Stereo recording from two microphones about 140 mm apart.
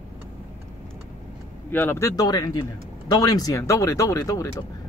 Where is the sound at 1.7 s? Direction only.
15° left (ahead or behind).